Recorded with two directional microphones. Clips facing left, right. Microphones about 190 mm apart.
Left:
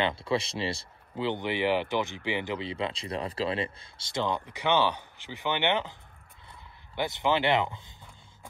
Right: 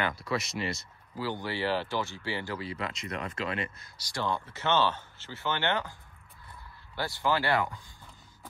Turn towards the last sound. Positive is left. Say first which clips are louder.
# left 2 dB
turn(degrees=20)  # may be behind; listen again after turning